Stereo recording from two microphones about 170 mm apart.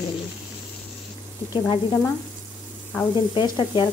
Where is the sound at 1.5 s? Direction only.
20° left (ahead or behind).